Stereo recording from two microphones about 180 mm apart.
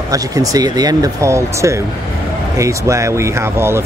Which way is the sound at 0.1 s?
20° right (ahead or behind).